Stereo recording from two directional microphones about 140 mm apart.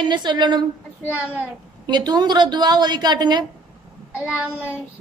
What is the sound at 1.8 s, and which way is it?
A woman's voice, 30° right (ahead or behind).